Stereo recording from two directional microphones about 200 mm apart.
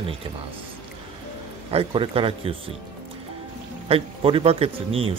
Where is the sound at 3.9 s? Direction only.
30° right (ahead or behind).